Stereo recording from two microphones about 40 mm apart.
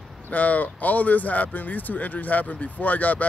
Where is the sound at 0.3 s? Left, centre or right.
Left.